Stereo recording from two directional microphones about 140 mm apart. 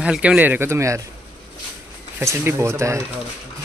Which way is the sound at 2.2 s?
20° right (ahead or behind).